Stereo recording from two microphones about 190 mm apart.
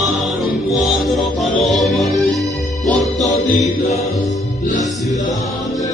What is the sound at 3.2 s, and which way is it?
Music, 40° left (ahead or behind).